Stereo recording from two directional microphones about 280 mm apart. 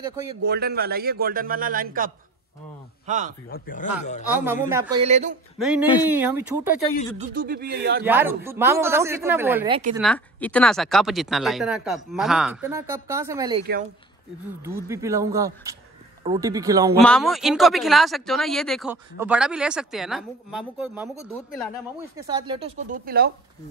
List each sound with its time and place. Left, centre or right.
0.0 s speech: centre
0.4 s speech: right
3.1 s speech: right
3.4 s speech: left
4.6 s speech: centre
5.0 s speech: right
5.6 s speech: centre
7.2 s speech: right
8.0 s speech: centre
9.7 s speech: right
9.9 s speech: centre
14.9 s speech: centre
17.0 s speech: centre
22.1 s speech: centre; by 23.3 s right